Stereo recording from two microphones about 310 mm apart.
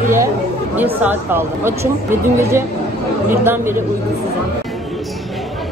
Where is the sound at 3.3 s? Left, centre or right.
Centre.